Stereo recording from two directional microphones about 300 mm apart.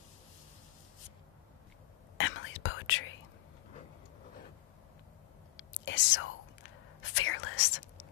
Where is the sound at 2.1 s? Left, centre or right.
Left.